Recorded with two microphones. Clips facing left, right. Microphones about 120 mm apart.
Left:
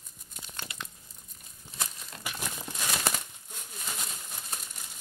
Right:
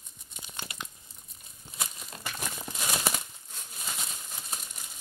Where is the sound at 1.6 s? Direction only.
10° right (ahead or behind).